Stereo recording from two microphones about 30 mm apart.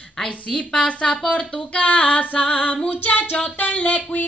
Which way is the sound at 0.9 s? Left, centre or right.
Left.